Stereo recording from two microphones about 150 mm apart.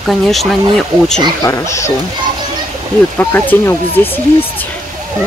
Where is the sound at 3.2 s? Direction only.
15° left (ahead or behind).